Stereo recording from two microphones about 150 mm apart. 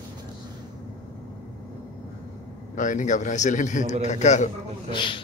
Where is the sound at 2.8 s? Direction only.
55° left (ahead or behind).